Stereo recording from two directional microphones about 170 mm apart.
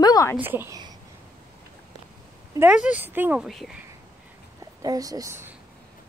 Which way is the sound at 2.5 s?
5° right (ahead or behind).